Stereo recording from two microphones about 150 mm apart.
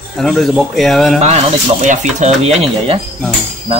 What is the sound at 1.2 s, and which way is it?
Speech, 50° right (ahead or behind).